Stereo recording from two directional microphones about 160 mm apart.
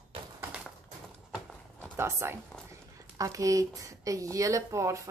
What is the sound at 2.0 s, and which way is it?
Speech, 15° right (ahead or behind).